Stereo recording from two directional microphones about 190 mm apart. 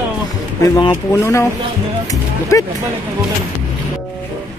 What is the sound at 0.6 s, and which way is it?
Speech, 20° left (ahead or behind).